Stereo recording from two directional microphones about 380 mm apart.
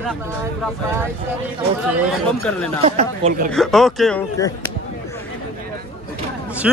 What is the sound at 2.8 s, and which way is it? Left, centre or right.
Speech, centre.